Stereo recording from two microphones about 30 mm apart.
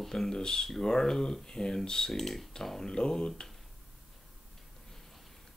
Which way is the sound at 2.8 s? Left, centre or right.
Left.